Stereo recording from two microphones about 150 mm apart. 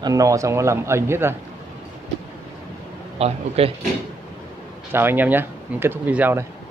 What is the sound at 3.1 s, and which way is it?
Speech, 40° right (ahead or behind).